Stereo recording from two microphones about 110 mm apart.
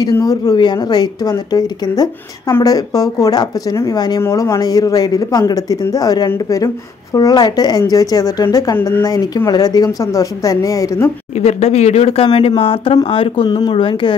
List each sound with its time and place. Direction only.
0.0 s speech: 35° left (ahead or behind)
11.3 s speech: 75° left (ahead or behind); by 14.1 s 50° left (ahead or behind)